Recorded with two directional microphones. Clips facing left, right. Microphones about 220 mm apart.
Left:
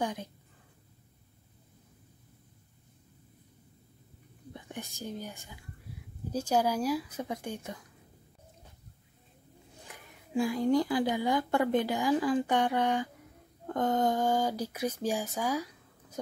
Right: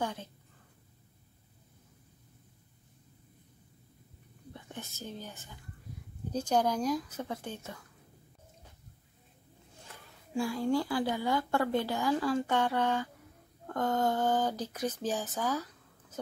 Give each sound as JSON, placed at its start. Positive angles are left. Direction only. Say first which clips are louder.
{"t": 0.0, "sound": "a sound", "louder": "left 2 dB", "side_deg": 15}
{"t": 4.6, "sound": "a woman's voice", "louder": "left 3 dB", "side_deg": 15}
{"t": 9.8, "sound": "a woman's voice", "louder": "left 1 dB", "side_deg": 20}